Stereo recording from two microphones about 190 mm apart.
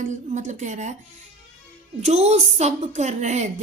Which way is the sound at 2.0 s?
35° right (ahead or behind).